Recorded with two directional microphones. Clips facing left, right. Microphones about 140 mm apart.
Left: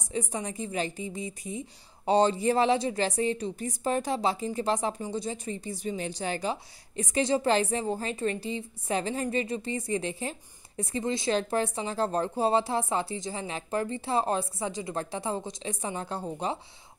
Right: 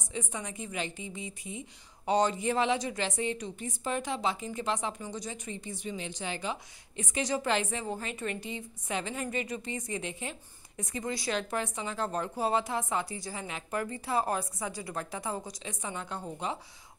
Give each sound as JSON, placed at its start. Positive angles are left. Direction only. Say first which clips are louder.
{"t": 0.1, "sound": "a woman's voice", "louder": "left 5 dB", "side_deg": 35}